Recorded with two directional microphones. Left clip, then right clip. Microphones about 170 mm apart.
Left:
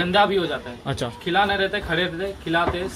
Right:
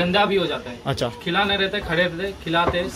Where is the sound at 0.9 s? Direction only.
5° right (ahead or behind).